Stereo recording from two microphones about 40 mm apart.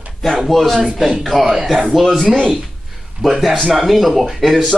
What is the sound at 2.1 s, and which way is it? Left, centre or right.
Speech, centre.